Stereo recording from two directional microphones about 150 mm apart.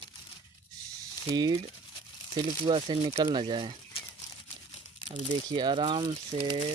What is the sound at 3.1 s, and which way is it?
Speech, 20° right (ahead or behind).